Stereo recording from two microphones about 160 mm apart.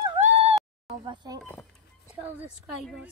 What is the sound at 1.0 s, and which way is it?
Speech, 30° right (ahead or behind).